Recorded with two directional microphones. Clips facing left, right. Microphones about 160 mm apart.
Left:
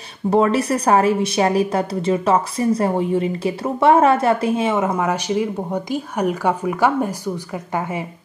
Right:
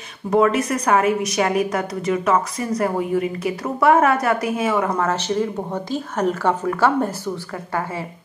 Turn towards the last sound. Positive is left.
turn(degrees=15)  # may be behind; listen again after turning